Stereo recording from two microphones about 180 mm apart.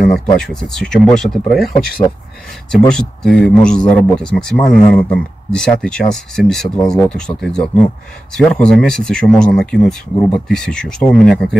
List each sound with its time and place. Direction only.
0.1 s speech: centre (ahead or behind)
2.9 s speech: 5° left (ahead or behind)